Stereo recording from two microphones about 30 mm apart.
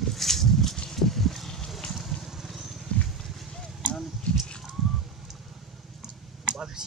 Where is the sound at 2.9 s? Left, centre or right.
Left.